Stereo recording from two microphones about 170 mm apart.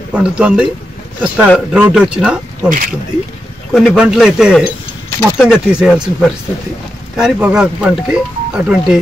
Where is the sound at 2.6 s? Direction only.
55° right (ahead or behind).